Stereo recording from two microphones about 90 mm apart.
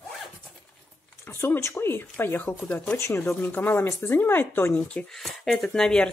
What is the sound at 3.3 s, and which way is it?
Speech, 20° left (ahead or behind).